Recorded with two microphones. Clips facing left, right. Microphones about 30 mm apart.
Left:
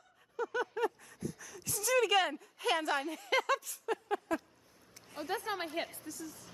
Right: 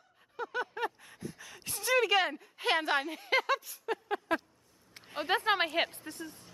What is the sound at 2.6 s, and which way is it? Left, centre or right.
Speech, right.